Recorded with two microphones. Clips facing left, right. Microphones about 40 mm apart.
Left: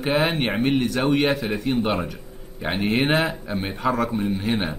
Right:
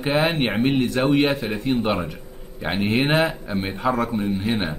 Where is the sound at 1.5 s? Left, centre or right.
Right.